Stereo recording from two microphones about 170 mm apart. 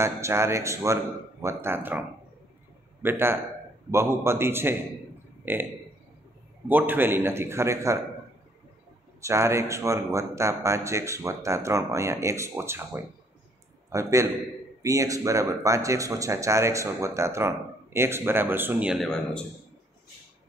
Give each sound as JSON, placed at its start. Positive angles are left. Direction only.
{"t": 0.0, "sound": "a man's voice", "side_deg": -15}
{"t": 6.7, "sound": "speech", "side_deg": -10}
{"t": 9.2, "sound": "a man's voice", "side_deg": -15}